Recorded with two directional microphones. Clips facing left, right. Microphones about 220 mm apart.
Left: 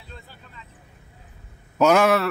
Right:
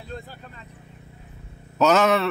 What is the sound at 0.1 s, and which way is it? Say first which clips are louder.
Speech: right 8 dB; 45° right (ahead or behind).